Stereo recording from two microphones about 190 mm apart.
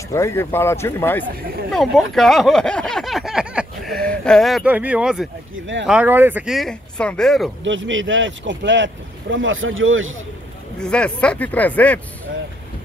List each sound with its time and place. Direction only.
0.1 s speech: 15° left (ahead or behind)
1.7 s speech: centre (ahead or behind)
7.6 s speech: 80° right
10.8 s speech: 5° left (ahead or behind)